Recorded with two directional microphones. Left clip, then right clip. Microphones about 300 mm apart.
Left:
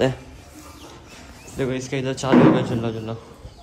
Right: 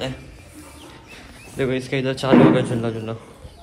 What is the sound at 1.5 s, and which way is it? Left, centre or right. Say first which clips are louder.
Speech: right 3 dB; centre.